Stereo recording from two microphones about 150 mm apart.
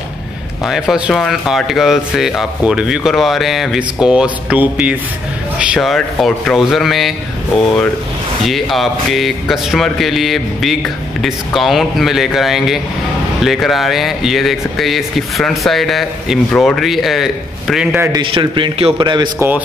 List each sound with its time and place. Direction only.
0.7 s speech: 5° right (ahead or behind)
18.1 s a man's voice: 30° right (ahead or behind)
19.3 s a man's voice: 15° right (ahead or behind)